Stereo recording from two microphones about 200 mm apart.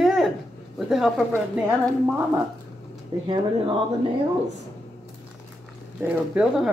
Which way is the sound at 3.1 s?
20° right (ahead or behind).